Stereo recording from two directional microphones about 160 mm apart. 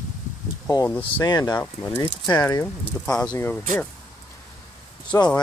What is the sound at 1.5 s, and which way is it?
Speech, 10° left (ahead or behind).